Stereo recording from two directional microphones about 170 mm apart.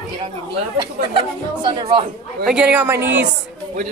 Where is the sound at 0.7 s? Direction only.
30° right (ahead or behind).